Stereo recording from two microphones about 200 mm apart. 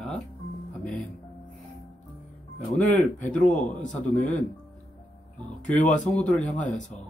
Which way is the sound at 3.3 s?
5° left (ahead or behind).